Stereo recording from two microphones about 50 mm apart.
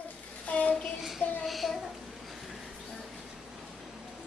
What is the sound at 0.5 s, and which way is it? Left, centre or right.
Child singing, left.